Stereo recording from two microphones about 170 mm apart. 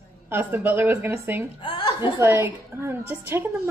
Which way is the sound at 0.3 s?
10° right (ahead or behind).